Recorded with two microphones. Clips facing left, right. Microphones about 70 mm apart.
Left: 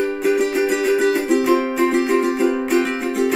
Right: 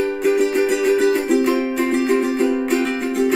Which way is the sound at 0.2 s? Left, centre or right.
Centre.